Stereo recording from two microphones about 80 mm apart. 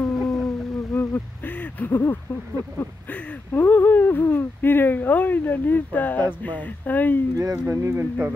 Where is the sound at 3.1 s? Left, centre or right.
Centre.